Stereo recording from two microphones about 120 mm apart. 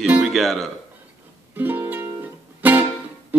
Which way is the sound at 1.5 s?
15° right (ahead or behind).